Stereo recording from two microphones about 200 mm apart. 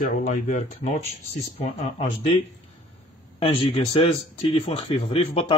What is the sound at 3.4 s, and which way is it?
Speech, 30° left (ahead or behind).